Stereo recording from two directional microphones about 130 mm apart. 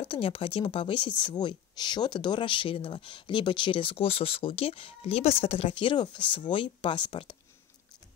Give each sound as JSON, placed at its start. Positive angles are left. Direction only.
{"t": 0.0, "sound": "a woman's voice", "side_deg": 45}